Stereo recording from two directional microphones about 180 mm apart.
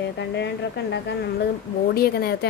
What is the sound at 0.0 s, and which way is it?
A woman's voice, 70° left (ahead or behind).